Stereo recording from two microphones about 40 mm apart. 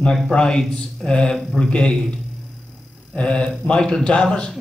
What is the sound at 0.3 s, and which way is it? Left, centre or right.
A man's voice, centre.